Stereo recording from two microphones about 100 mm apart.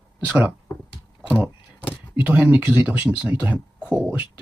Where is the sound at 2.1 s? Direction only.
15° right (ahead or behind).